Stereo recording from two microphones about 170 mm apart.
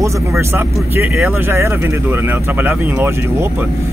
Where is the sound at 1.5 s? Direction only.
15° right (ahead or behind).